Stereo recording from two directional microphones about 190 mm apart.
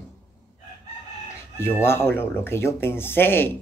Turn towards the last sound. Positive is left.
turn(degrees=10)  # may be behind; listen again after turning